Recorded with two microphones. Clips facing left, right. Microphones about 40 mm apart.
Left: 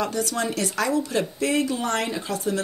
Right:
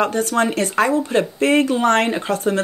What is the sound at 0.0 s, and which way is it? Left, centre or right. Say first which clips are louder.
Speech: right 7 dB; right.